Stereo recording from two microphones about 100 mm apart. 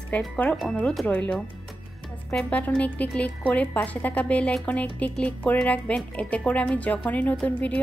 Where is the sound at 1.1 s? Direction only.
15° left (ahead or behind).